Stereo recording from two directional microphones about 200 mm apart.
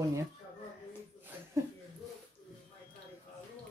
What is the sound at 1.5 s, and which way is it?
Speech, 15° right (ahead or behind).